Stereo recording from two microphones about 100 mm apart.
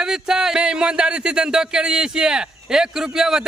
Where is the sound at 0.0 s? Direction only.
5° right (ahead or behind).